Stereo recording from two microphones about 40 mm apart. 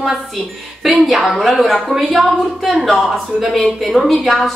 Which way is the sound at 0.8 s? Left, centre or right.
Centre.